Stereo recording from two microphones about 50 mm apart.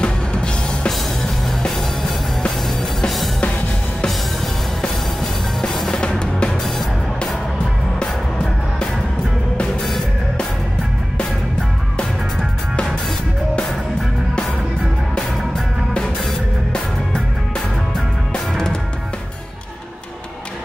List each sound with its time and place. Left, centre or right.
0.0 s music: left
1.6 s music: centre
5.6 s music: centre
5.9 s music: centre
15.1 s music: centre